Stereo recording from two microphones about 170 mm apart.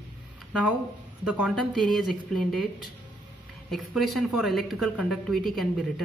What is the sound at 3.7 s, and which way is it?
A man's voice, centre (ahead or behind).